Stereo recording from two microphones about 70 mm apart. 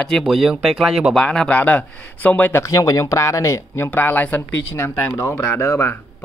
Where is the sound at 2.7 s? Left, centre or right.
Left.